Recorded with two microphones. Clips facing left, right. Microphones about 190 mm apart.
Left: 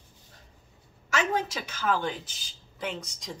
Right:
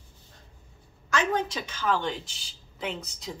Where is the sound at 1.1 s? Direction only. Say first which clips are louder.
Right 1 dB; 10° left (ahead or behind).